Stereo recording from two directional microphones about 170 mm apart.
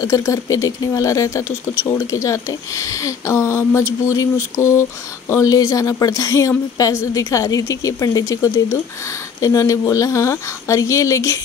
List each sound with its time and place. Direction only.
0.0 s speech: 20° left (ahead or behind)